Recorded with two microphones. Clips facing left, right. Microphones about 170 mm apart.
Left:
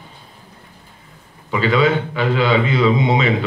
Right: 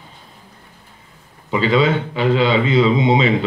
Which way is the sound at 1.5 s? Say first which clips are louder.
Even; 25° right (ahead or behind).